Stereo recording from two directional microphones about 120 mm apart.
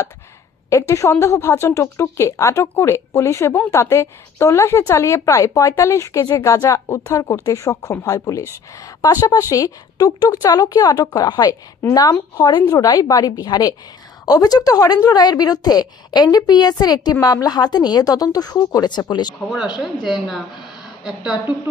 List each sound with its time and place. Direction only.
0.7 s a woman's voice: 25° left (ahead or behind)
19.8 s a woman's voice: centre (ahead or behind)